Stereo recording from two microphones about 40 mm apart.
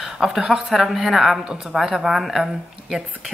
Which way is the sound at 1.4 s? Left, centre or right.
Centre.